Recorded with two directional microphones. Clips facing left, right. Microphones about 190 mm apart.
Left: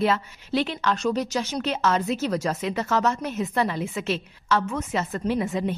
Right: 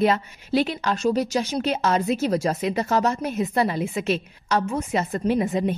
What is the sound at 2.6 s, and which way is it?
A woman's voice, 15° right (ahead or behind).